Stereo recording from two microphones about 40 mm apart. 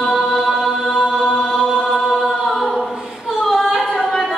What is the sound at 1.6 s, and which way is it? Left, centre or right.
Chant, centre.